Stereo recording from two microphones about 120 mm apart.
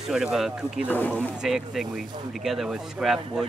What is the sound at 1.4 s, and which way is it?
Speech, 5° right (ahead or behind).